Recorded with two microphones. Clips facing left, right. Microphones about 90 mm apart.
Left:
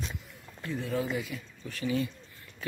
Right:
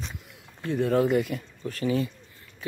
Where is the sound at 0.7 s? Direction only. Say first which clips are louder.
Right 9 dB; 65° right (ahead or behind); by 2.0 s 45° right (ahead or behind).